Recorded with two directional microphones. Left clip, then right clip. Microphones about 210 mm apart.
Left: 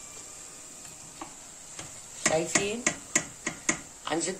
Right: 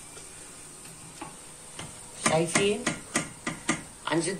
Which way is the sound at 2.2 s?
50° left (ahead or behind).